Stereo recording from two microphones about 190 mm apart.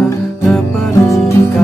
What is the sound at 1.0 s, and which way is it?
Music, 15° left (ahead or behind).